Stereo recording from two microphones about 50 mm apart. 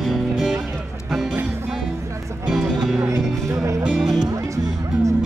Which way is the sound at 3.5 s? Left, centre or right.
Right.